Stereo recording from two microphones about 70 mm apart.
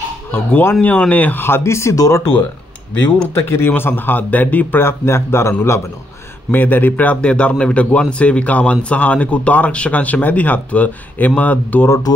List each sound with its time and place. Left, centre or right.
0.3 s a man's voice: left
3.3 s a man's voice: left
6.5 s a man's voice: left